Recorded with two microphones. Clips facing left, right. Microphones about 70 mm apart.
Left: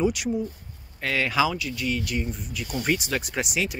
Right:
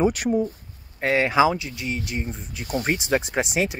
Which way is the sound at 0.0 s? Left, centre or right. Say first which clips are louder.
Right 4 dB; right.